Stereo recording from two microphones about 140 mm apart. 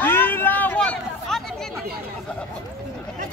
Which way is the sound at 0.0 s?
15° left (ahead or behind).